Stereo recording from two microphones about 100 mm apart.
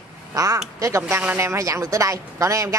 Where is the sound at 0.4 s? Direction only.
35° right (ahead or behind).